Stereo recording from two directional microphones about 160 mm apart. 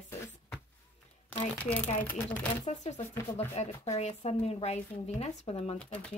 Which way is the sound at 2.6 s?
45° left (ahead or behind).